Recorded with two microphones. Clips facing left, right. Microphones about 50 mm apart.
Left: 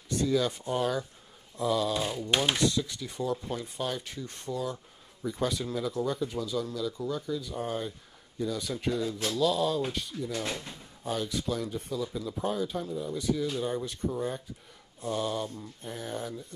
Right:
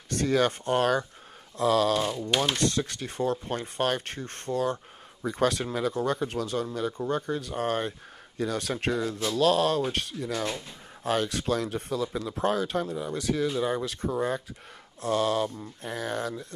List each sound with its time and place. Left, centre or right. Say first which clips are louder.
0.1 s speech: right 3 dB; right
1.6 s a sound: right 5 dB; right
2.3 s speech: even; centre
2.7 s speech: right 2 dB; right
5.2 s speech: right 5 dB; right
5.7 s speech: right 3 dB; right
13.6 s speech: right 4 dB; right